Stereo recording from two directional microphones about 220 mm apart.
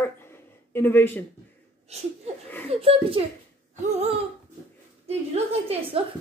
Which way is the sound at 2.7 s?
25° right (ahead or behind).